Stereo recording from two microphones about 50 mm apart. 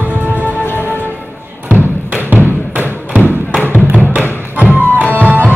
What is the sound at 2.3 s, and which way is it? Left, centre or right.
Music, right.